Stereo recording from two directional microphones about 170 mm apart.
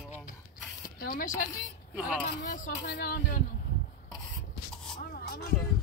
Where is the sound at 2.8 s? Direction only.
65° left (ahead or behind).